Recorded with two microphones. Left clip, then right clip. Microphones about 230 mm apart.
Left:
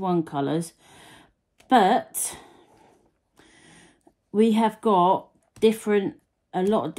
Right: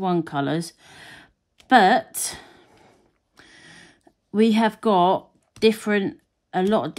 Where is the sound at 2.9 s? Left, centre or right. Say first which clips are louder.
Right 2 dB; right.